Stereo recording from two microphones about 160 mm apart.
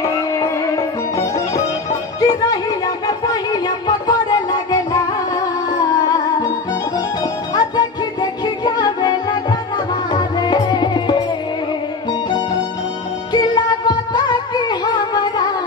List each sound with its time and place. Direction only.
1.1 s music: 20° left (ahead or behind)
7.5 s music: 25° left (ahead or behind)
13.3 s music: 25° left (ahead or behind)